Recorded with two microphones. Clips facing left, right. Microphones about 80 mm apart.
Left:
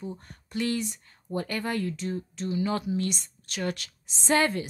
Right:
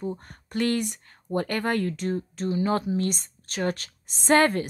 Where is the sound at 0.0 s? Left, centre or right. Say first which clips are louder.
Right 6 dB; right.